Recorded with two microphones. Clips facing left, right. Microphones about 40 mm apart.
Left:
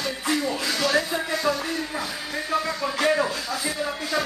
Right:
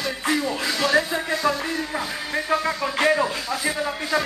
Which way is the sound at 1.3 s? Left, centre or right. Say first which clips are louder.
Right 2 dB; right.